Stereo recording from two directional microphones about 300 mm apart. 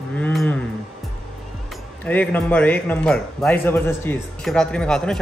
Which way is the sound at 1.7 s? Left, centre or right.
Centre.